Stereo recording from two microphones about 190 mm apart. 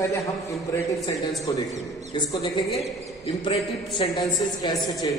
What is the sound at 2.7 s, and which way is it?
A man's voice, 30° left (ahead or behind).